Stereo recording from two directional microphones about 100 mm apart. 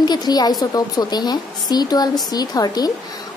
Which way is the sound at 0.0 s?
45° left (ahead or behind).